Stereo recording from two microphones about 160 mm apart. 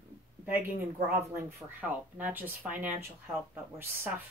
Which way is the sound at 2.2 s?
10° right (ahead or behind).